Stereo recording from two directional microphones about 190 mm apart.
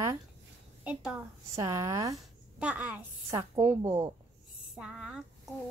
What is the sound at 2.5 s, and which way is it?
A child's voice, 5° right (ahead or behind).